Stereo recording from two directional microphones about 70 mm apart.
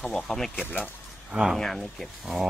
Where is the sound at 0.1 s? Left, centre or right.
Centre.